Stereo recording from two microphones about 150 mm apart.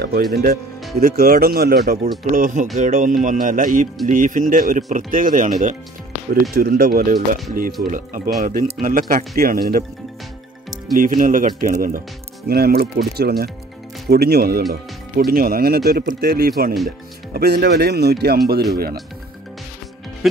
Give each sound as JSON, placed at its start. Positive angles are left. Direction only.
{"t": 0.0, "sound": "speech", "side_deg": -90}
{"t": 2.3, "sound": "speech", "side_deg": -60}
{"t": 6.5, "sound": "speech", "side_deg": -85}
{"t": 7.8, "sound": "speech", "side_deg": -75}
{"t": 8.4, "sound": "speech", "side_deg": -60}
{"t": 9.4, "sound": "speech", "side_deg": -75}
{"t": 11.0, "sound": "speech", "side_deg": -60}
{"t": 12.4, "sound": "speech", "side_deg": -90}